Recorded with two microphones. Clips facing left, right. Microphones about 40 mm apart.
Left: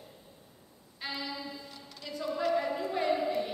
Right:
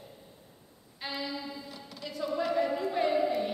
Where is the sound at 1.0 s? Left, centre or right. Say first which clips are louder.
Right 2 dB; centre.